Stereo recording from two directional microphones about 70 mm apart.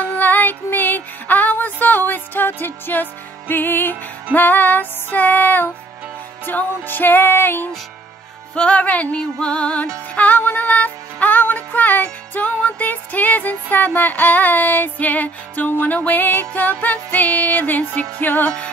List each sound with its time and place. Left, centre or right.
0.0 s music: left
8.5 s music: centre